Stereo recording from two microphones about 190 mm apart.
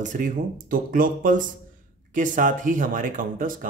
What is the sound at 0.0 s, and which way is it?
Speech, 45° right (ahead or behind).